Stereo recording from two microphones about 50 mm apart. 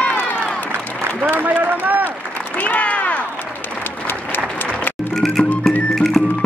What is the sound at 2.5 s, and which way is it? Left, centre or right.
Applause, left.